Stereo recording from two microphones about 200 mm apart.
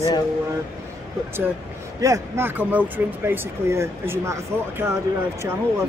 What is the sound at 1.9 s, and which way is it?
Speech, 15° right (ahead or behind).